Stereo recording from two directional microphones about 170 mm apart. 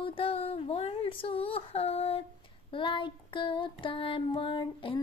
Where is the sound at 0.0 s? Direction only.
30° left (ahead or behind).